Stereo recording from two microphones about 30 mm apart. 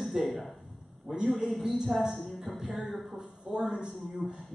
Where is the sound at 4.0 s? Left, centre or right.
Centre.